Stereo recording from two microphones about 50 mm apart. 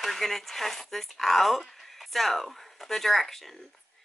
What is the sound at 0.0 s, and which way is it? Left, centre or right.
Speech, centre.